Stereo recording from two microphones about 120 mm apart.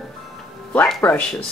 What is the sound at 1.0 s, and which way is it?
Speech, 15° left (ahead or behind).